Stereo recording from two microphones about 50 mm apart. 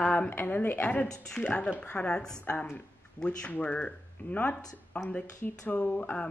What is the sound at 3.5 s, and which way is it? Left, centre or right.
Speech, left.